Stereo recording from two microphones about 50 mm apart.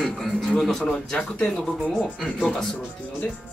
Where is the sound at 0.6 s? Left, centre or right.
Centre.